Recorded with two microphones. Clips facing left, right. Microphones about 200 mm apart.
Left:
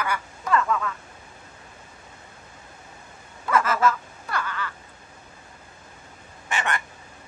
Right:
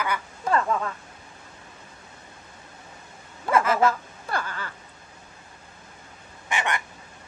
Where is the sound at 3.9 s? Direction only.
30° right (ahead or behind).